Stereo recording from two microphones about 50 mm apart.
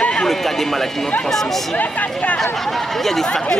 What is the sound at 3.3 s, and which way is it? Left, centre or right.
Speech, centre.